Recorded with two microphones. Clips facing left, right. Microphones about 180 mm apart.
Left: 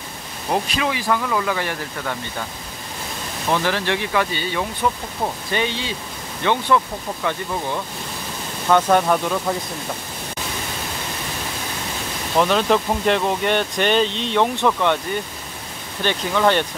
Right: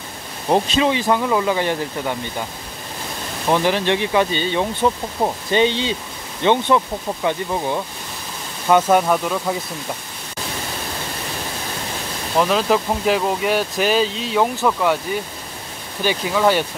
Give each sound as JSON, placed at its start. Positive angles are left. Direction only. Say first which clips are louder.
{"t": 0.5, "sound": "speech", "louder": "right 5 dB", "side_deg": -25}
{"t": 3.4, "sound": "speech", "louder": "right 4 dB", "side_deg": -15}
{"t": 8.6, "sound": "speech", "louder": "right 1 dB", "side_deg": -10}
{"t": 12.4, "sound": "speech", "louder": "even", "side_deg": 0}
{"t": 16.0, "sound": "speech", "louder": "right 1 dB", "side_deg": -5}